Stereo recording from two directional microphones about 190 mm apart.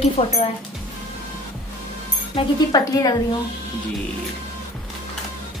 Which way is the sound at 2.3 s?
20° left (ahead or behind).